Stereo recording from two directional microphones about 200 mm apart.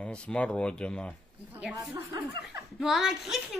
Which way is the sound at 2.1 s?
20° right (ahead or behind).